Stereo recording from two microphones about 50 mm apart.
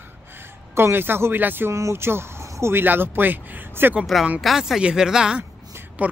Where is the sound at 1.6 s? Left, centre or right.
Right.